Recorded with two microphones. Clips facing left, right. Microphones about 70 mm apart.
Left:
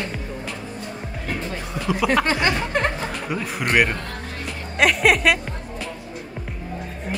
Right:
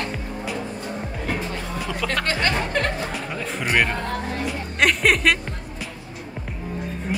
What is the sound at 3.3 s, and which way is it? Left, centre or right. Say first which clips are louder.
Speech: left 2 dB; centre.